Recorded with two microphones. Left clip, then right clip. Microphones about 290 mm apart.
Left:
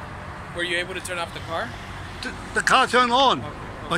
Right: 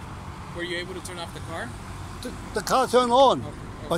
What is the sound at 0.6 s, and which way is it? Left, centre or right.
Speech, right.